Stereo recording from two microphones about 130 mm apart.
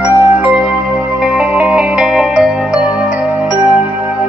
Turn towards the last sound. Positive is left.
turn(degrees=-10)  # may be behind; listen again after turning